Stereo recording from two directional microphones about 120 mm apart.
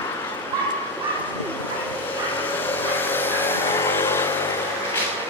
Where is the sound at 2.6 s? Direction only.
15° left (ahead or behind).